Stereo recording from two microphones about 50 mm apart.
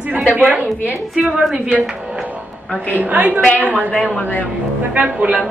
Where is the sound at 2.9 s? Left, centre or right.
Right.